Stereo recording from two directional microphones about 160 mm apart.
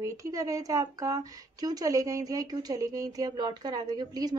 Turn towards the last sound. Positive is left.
turn(degrees=-25)  # may be behind; listen again after turning